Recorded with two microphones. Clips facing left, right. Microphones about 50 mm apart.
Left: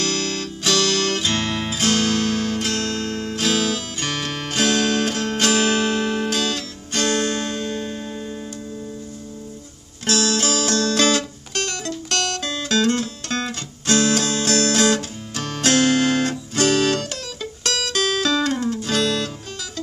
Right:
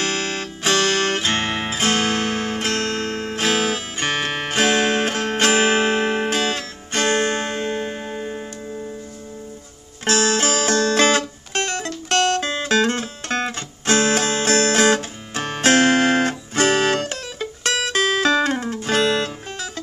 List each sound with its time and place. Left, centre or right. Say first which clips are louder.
0.0 s music: even; right
10.0 s music: right 2 dB; right